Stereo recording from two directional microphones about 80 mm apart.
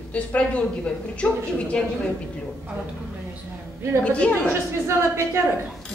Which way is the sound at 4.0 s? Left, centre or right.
Centre.